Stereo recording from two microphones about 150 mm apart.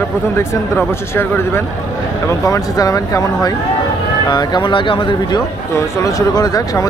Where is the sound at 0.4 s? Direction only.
15° left (ahead or behind).